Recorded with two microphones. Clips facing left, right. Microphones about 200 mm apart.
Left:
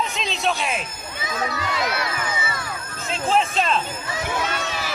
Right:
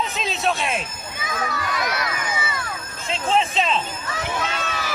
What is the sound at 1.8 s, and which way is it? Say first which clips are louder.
Speech: left 2 dB; 25° left (ahead or behind).